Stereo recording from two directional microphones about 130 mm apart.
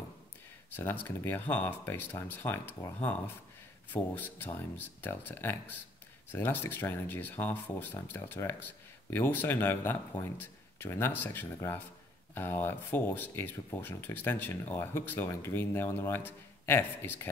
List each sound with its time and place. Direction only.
0.7 s speech: 15° left (ahead or behind)